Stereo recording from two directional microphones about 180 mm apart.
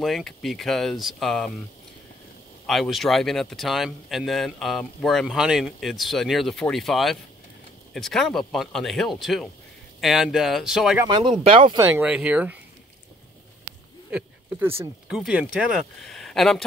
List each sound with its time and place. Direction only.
0.0 s speech: centre (ahead or behind)
2.6 s speech: centre (ahead or behind)
11.4 s speech: 30° right (ahead or behind)
11.8 s speech: 10° right (ahead or behind)
14.1 s speech: 10° right (ahead or behind)